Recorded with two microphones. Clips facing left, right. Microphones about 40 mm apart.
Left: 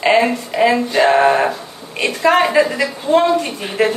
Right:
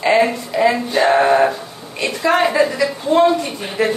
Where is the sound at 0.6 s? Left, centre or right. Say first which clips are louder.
Left 2 dB; left.